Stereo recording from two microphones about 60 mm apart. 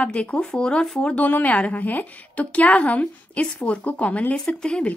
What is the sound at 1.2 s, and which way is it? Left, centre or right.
A woman's voice, left.